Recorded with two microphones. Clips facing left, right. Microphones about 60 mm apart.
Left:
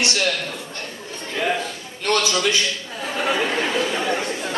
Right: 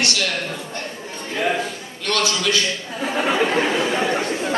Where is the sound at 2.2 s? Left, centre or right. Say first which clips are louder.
Even; left.